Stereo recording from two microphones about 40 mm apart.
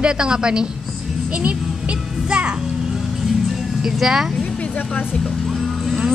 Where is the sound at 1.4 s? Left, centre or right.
Right.